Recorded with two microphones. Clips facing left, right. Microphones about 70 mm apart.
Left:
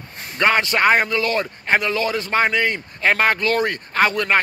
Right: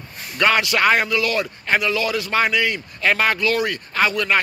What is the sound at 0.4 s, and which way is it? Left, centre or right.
A man's voice, left.